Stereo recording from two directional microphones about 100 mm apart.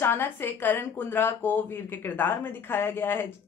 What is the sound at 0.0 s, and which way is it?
Speech, 20° left (ahead or behind).